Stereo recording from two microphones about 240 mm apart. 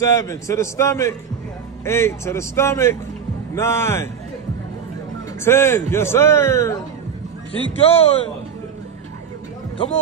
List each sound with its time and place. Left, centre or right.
0.0 s a man's voice: centre
5.4 s a man's voice: centre
7.8 s a man's voice: left